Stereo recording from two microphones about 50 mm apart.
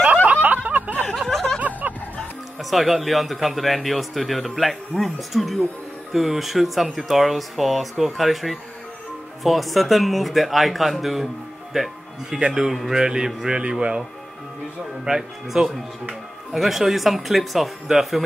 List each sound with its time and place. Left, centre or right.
0.3 s a sound: right
1.1 s a sound: centre
1.6 s music: right
2.6 s speech: centre
11.7 s music: centre
12.4 s speech: centre
12.6 s speech: centre
15.0 s speech: centre